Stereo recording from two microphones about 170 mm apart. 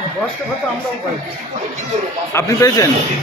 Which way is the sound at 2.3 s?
15° left (ahead or behind).